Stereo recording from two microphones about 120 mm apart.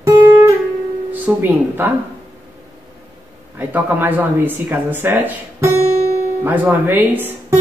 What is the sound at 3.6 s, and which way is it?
A woman's voice, 15° right (ahead or behind).